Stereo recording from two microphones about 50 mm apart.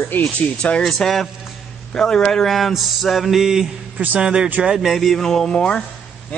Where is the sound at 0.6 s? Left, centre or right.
Left.